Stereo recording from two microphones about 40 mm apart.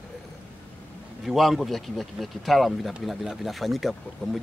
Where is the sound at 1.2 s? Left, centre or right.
Centre.